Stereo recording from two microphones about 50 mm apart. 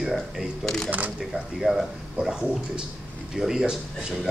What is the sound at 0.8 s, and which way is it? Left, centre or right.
Speech, right.